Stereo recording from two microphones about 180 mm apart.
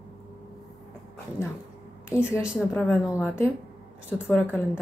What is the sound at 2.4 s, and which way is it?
Speech, centre (ahead or behind).